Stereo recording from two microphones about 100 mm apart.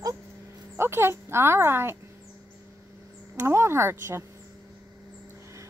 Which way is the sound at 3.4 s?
25° right (ahead or behind).